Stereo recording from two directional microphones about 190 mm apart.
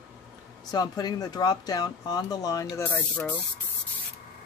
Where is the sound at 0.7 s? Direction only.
20° left (ahead or behind).